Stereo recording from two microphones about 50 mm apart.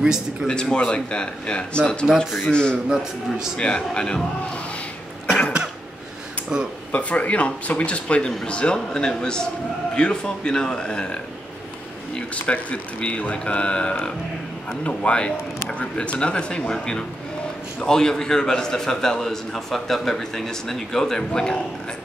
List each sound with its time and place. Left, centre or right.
0.0 s speech: centre
0.5 s a man's voice: centre
2.9 s speech: centre
3.5 s a man's voice: centre
6.5 s speech: centre
6.9 s a man's voice: left
12.4 s a man's voice: left